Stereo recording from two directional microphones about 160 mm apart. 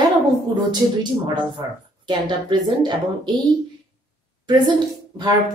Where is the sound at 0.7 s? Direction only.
30° right (ahead or behind).